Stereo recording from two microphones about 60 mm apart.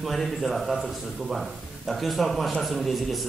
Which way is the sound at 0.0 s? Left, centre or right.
Centre.